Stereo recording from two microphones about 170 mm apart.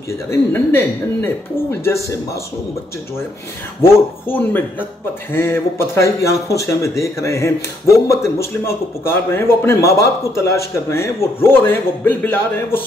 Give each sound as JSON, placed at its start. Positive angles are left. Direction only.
{"t": 0.3, "sound": "speech", "side_deg": 15}
{"t": 3.8, "sound": "speech", "side_deg": 10}